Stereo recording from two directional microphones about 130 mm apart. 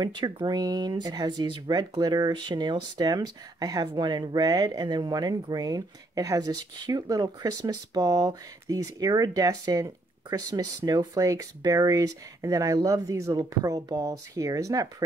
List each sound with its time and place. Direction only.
0.0 s speech: 35° right (ahead or behind)